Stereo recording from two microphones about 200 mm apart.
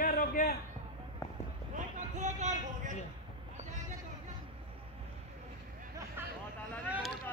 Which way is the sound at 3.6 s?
35° right (ahead or behind).